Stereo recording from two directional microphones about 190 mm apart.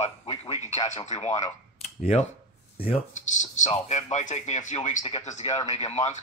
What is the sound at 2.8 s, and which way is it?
Speech, 35° left (ahead or behind).